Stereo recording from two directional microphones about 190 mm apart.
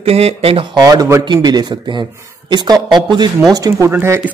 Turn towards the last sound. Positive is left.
turn(degrees=-10)  # may be behind; listen again after turning